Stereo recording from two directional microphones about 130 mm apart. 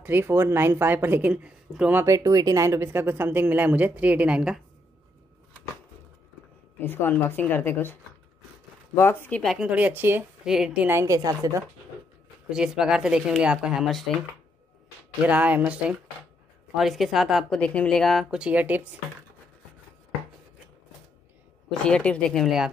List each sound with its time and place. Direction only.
0.0 s speech: 15° right (ahead or behind)
2.1 s speech: 25° right (ahead or behind); by 4.6 s 5° right (ahead or behind)
6.8 s speech: 15° left (ahead or behind)
8.9 s speech: 15° left (ahead or behind)
9.4 s a woman's voice: centre (ahead or behind)
9.7 s speech: 10° right (ahead or behind)
10.4 s a woman's voice: 5° right (ahead or behind)
11.0 s a woman's voice: 25° right (ahead or behind)
12.4 s a woman's voice: 5° right (ahead or behind)
15.2 s a woman's voice: 10° right (ahead or behind)
21.6 s a woman's voice: 5° left (ahead or behind)